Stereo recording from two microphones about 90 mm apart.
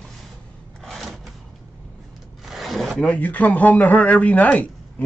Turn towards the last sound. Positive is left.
turn(degrees=15)  # may be behind; listen again after turning